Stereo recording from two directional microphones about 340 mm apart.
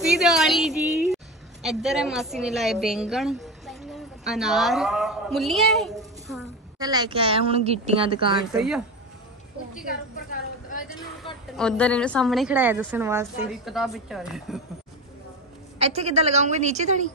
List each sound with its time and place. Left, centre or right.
0.0 s a sound: centre
6.8 s a woman's voice: centre
8.5 s a woman's voice: centre
10.3 s a sound: left
11.5 s a woman's voice: centre
15.8 s a woman's voice: centre